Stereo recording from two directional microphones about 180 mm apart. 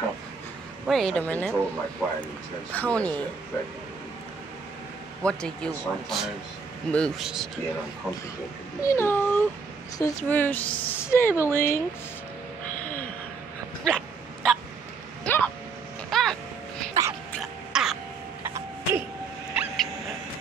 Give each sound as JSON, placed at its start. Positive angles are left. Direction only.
{"t": 0.8, "sound": "speech", "side_deg": 0}
{"t": 2.7, "sound": "speech", "side_deg": 5}
{"t": 5.2, "sound": "speech", "side_deg": 5}
{"t": 8.8, "sound": "speech", "side_deg": 15}
{"t": 12.7, "sound": "a sound", "side_deg": 10}
{"t": 13.8, "sound": "dog", "side_deg": 5}
{"t": 15.2, "sound": "vehicle", "side_deg": 10}
{"t": 16.1, "sound": "a sound", "side_deg": 0}
{"t": 17.0, "sound": "music", "side_deg": -15}
{"t": 17.4, "sound": "throat clearing", "side_deg": 0}
{"t": 18.4, "sound": "music", "side_deg": -10}
{"t": 19.5, "sound": "vehicle", "side_deg": -5}